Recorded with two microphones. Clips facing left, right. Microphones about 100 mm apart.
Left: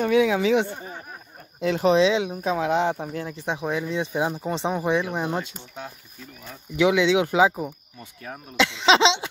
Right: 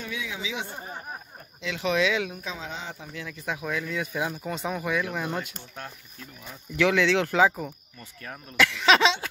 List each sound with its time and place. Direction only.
0.0 s speech: 60° left (ahead or behind)
1.6 s speech: 45° left (ahead or behind)
2.4 s speech: 60° left (ahead or behind); by 3.3 s 45° left (ahead or behind)
3.3 s speech: 30° left (ahead or behind)